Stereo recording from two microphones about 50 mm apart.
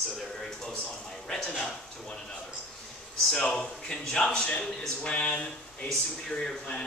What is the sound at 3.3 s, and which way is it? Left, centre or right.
A man's voice, centre.